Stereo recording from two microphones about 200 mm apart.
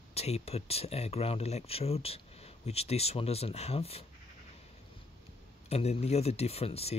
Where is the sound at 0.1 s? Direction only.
30° left (ahead or behind).